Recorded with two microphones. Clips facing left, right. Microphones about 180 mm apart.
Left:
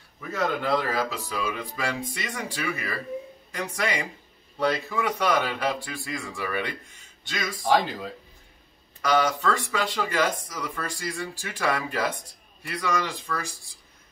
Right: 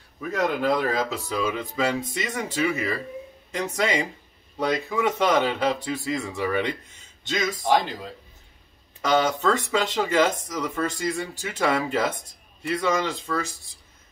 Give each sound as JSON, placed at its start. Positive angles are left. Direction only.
{"t": 0.3, "sound": "speech", "side_deg": -15}
{"t": 9.0, "sound": "speech", "side_deg": -20}